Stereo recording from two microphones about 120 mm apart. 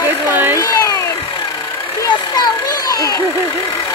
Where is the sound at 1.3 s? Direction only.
35° left (ahead or behind).